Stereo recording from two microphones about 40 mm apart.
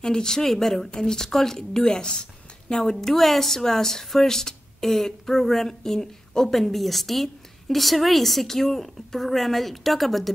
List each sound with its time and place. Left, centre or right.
0.0 s speech: centre